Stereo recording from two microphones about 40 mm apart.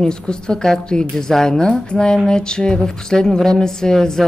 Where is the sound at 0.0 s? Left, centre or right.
Centre.